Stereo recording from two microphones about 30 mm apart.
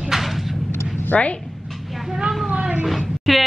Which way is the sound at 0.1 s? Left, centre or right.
Centre.